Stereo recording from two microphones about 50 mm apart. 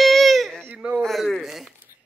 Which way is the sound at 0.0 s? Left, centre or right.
Centre.